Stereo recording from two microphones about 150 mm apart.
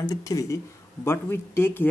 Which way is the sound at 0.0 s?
20° left (ahead or behind).